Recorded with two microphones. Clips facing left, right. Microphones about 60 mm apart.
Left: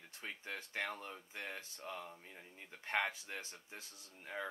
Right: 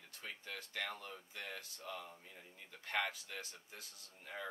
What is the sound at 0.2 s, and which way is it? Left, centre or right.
Speech, left.